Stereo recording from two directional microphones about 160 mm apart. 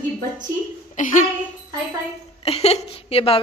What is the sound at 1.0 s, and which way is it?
Speech, 55° left (ahead or behind).